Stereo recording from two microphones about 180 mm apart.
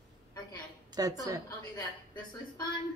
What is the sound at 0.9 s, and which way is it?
Speech, 20° right (ahead or behind).